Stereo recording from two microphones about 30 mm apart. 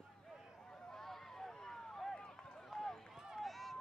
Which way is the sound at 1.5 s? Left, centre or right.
Centre.